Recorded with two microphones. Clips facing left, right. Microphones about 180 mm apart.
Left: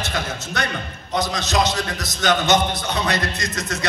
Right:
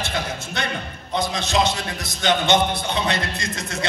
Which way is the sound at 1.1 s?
25° right (ahead or behind).